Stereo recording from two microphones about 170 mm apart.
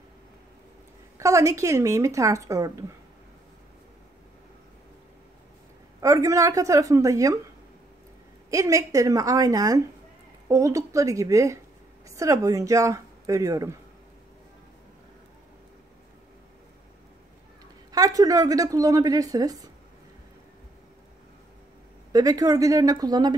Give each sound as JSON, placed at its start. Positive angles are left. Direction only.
{"t": 1.1, "sound": "speech", "side_deg": -20}
{"t": 5.9, "sound": "a woman's voice", "side_deg": -20}
{"t": 8.5, "sound": "a woman's voice", "side_deg": -20}
{"t": 17.9, "sound": "a woman's voice", "side_deg": -20}
{"t": 22.1, "sound": "a woman's voice", "side_deg": -20}